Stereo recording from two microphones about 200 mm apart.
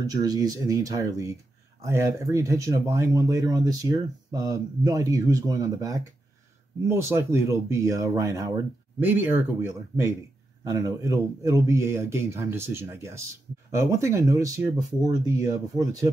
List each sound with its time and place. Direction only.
0.0 s speech: 15° right (ahead or behind)